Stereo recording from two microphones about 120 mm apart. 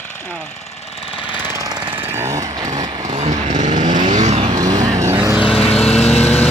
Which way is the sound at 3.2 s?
85° right.